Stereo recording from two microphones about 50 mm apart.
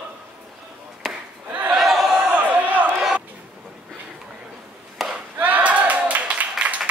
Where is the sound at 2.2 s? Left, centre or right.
Right.